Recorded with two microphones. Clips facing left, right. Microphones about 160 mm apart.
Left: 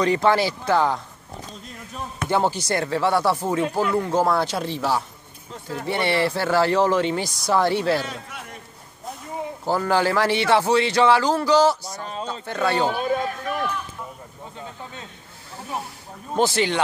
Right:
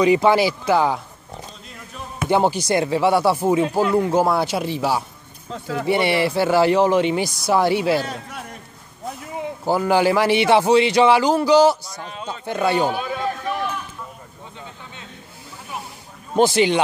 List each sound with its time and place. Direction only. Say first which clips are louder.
0.0 s speech: right 4 dB; 10° right (ahead or behind)
2.2 s speech: right 4 dB; 15° right (ahead or behind)
5.5 s speech: right 5 dB; 75° right (ahead or behind)
5.9 s speech: right 3 dB; 10° right (ahead or behind)
8.0 s a man's voice: right 3 dB; 40° right (ahead or behind)
9.7 s speech: right 4 dB; 15° right (ahead or behind)
12.9 s a sound: left 1 dB; 45° left (ahead or behind)
16.3 s speech: right 5 dB; 15° right (ahead or behind)